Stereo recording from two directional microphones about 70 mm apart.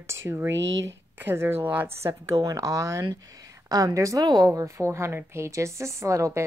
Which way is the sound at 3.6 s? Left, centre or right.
Right.